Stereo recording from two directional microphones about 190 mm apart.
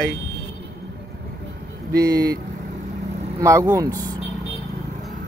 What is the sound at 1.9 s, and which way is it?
Speech, 20° right (ahead or behind).